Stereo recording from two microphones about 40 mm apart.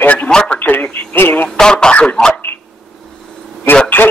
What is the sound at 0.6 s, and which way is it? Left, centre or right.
Radio, left.